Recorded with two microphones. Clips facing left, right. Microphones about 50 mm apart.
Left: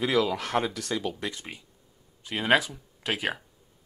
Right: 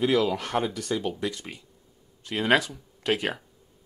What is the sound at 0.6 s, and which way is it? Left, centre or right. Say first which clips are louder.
Speech: right 1 dB; left.